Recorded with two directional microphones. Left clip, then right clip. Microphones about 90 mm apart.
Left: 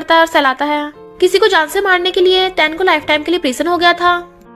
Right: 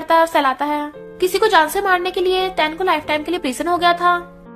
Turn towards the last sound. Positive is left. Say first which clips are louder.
# left 3 dB
turn(degrees=40)  # may be behind; listen again after turning